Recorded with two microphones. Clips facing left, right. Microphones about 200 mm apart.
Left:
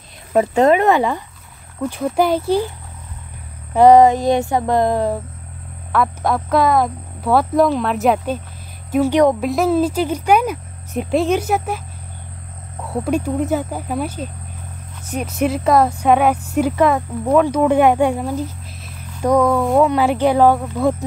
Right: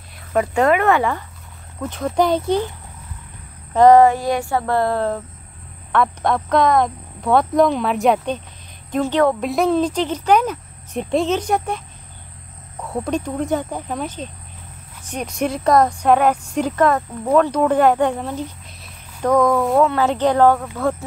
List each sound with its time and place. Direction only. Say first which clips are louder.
0.3 s a woman's voice: left 3 dB; 25° left (ahead or behind); by 2.6 s 5° left (ahead or behind)
3.7 s a woman's voice: left 1 dB; 15° left (ahead or behind)
5.9 s a woman's voice: even; 5° left (ahead or behind)
9.4 s a woman's voice: left 1 dB; centre (ahead or behind)
12.8 s a woman's voice: left 3 dB; 5° left (ahead or behind)